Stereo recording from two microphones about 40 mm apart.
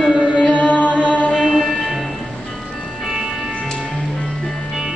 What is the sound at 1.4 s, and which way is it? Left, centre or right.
Music, centre.